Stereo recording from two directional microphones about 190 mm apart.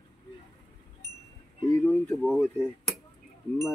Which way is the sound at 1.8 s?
10° left (ahead or behind).